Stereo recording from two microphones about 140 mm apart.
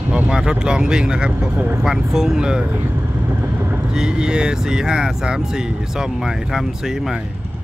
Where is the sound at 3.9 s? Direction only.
5° right (ahead or behind).